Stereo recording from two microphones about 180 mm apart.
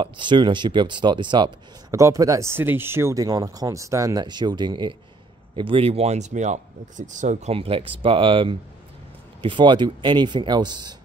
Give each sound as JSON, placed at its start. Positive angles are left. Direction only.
{"t": 0.0, "sound": "speech", "side_deg": -25}